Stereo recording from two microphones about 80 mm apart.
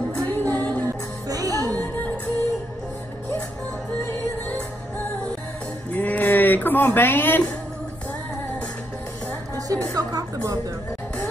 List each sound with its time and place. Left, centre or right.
0.2 s music: left
0.8 s music: right
5.9 s a sound: left
9.7 s speech: right